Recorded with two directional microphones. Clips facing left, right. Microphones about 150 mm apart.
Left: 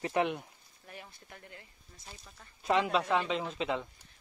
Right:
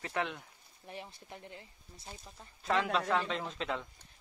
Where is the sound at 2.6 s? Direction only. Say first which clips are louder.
Left 3 dB; 5° left (ahead or behind).